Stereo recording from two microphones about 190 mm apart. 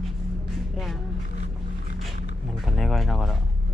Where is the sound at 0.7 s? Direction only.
Centre (ahead or behind).